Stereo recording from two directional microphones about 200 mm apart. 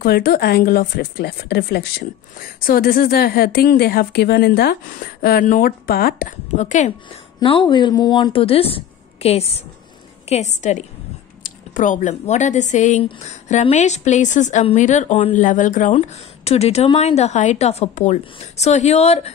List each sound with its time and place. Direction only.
0.0 s speech: 50° left (ahead or behind)
7.3 s a woman's voice: 25° left (ahead or behind); by 15.9 s 40° left (ahead or behind)
15.9 s a woman's voice: 30° left (ahead or behind)